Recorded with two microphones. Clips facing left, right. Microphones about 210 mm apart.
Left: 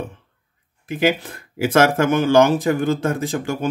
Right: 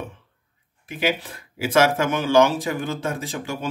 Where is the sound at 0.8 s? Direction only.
50° left (ahead or behind).